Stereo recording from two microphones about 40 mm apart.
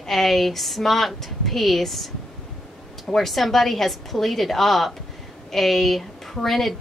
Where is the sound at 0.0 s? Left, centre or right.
Centre.